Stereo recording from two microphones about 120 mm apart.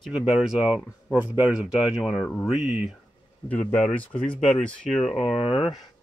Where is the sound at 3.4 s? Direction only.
10° left (ahead or behind).